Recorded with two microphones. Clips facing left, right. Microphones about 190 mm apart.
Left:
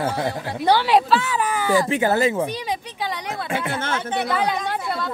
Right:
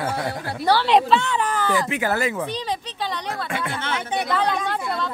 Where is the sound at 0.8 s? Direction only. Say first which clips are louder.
Even; 5° left (ahead or behind).